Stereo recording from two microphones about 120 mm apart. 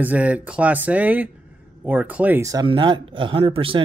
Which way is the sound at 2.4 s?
30° right (ahead or behind).